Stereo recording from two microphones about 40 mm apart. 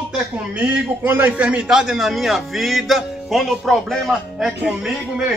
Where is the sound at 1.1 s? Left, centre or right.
Right.